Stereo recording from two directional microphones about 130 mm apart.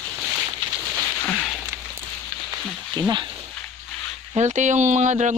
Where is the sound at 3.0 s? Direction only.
35° right (ahead or behind).